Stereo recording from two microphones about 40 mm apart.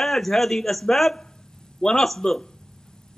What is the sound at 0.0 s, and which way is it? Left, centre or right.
A man's voice, centre.